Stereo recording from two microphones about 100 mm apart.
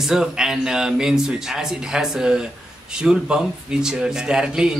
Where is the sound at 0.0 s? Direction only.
5° right (ahead or behind).